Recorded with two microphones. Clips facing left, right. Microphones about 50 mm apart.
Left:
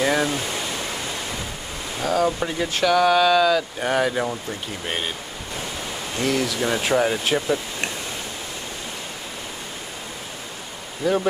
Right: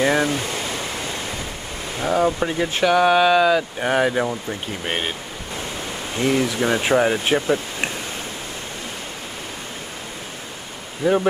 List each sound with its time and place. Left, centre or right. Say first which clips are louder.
0.0 s speech: right 2 dB; centre
0.6 s pink noise: right 1 dB; right
2.0 s speech: right 2 dB; right
2.2 s speech: right 2 dB; centre
4.8 s speech: right 3 dB; right
6.1 s speech: right 3 dB; right
11.0 s speech: right 3 dB; right